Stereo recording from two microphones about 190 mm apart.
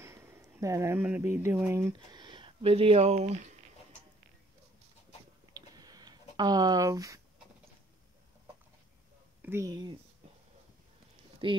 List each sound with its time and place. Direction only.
0.0 s speech: 15° right (ahead or behind); by 3.5 s 35° right (ahead or behind)
5.5 s a sound: 20° right (ahead or behind)
9.4 s speech: 15° right (ahead or behind)
11.4 s speech: 25° right (ahead or behind)